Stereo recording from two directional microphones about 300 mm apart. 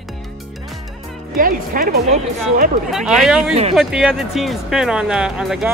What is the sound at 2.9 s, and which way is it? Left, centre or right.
Speech, centre.